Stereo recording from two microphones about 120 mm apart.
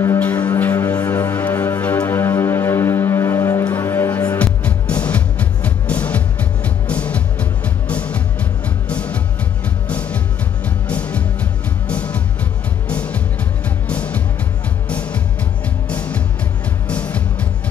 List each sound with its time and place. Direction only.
0.0 s music: 20° left (ahead or behind)